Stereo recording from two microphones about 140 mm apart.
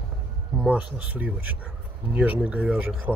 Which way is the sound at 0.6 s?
5° right (ahead or behind).